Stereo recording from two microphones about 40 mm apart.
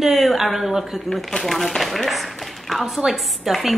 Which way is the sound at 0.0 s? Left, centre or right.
Centre.